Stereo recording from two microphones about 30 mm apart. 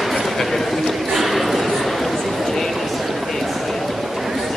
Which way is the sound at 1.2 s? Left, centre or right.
Centre.